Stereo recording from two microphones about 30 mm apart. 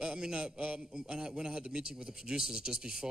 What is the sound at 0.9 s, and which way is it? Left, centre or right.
Speech, right.